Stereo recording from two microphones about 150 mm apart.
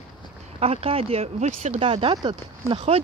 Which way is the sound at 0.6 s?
40° right (ahead or behind).